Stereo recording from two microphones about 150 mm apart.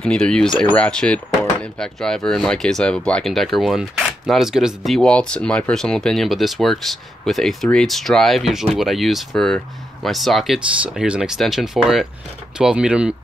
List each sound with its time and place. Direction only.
0.0 s speech: 5° left (ahead or behind)